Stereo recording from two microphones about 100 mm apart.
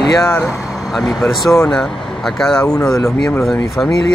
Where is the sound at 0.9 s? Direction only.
Centre (ahead or behind).